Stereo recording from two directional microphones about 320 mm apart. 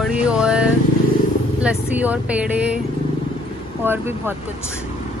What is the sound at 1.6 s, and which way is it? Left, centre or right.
A woman's voice, centre.